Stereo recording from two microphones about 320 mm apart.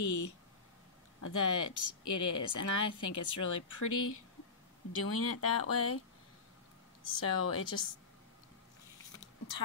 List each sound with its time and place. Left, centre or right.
0.0 s speech: left
4.9 s speech: left
5.3 s speech: left
7.2 s a woman's voice: left